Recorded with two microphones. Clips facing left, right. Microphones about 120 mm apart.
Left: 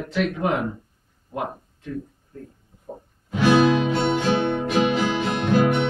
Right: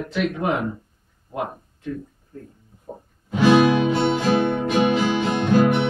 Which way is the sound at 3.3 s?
15° right (ahead or behind).